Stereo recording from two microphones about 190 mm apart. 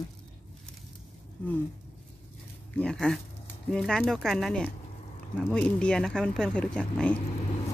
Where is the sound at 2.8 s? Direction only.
5° left (ahead or behind).